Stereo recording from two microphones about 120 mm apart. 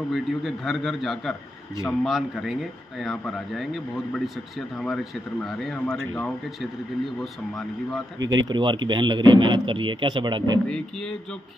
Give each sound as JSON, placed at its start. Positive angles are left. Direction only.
{"t": 0.1, "sound": "speech", "side_deg": 0}
{"t": 7.2, "sound": "speech", "side_deg": 0}
{"t": 8.2, "sound": "speech", "side_deg": -35}
{"t": 10.7, "sound": "speech", "side_deg": 5}